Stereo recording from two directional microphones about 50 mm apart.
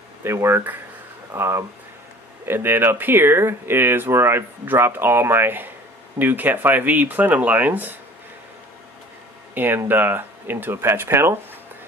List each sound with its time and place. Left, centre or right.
0.2 s speech: right
1.3 s speech: right
9.5 s speech: right